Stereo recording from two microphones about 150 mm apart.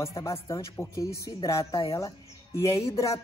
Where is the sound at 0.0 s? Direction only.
20° left (ahead or behind).